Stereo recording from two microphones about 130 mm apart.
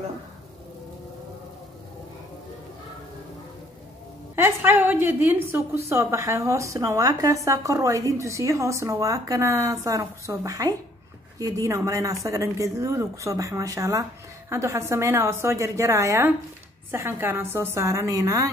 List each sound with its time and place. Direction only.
4.4 s a woman's voice: 20° right (ahead or behind)